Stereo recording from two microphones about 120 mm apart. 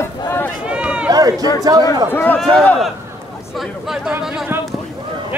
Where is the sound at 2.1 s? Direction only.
15° left (ahead or behind).